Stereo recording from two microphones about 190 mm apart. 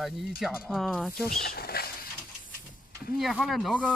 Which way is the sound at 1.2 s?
50° left (ahead or behind).